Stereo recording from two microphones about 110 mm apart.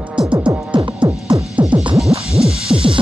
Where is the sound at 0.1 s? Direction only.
10° right (ahead or behind).